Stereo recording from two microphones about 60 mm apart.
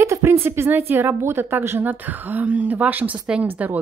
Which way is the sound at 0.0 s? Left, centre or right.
Right.